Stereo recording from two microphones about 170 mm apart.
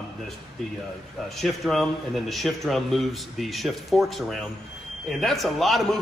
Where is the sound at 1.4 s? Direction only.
Centre (ahead or behind).